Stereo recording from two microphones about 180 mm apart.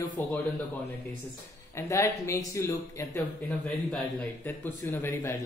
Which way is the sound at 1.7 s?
15° left (ahead or behind).